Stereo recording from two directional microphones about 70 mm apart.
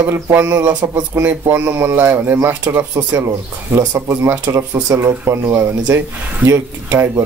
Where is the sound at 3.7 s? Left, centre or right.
Right.